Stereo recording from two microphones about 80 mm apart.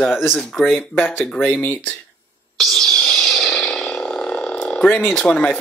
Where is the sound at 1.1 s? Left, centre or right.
Centre.